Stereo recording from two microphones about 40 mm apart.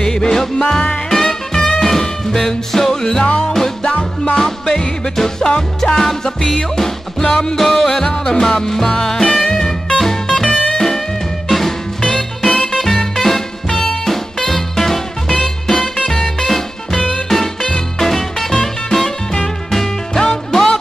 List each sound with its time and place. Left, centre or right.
0.0 s music: centre
1.1 s music: centre